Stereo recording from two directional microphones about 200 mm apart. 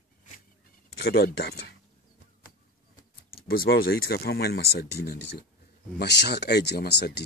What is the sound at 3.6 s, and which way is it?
Speech, 50° left (ahead or behind).